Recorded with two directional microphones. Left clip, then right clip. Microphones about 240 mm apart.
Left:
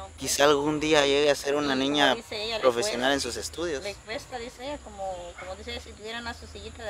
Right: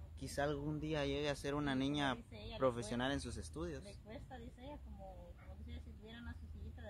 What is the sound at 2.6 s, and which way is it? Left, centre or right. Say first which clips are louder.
Speech: left 13 dB; centre.